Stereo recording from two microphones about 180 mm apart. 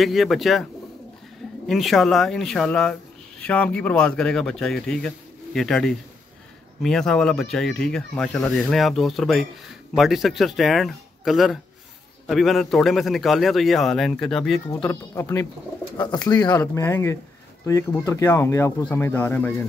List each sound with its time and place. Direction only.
0.0 s speech: centre (ahead or behind)
1.7 s speech: centre (ahead or behind)
14.8 s speech: 15° left (ahead or behind)